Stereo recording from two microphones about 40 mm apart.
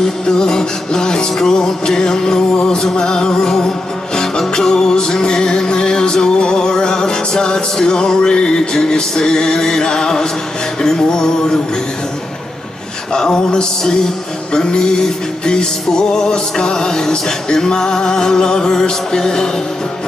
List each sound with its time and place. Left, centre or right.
0.0 s music: centre
13.1 s music: centre